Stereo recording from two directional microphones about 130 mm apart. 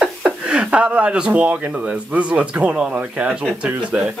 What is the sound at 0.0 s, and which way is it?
Speech, 5° right (ahead or behind).